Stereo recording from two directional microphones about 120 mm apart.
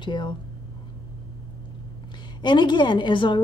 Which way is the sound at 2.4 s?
40° left (ahead or behind).